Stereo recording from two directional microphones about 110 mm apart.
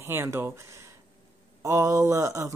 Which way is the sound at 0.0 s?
25° right (ahead or behind).